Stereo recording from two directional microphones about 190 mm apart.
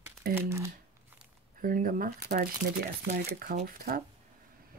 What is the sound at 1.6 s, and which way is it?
Speech, 45° right (ahead or behind).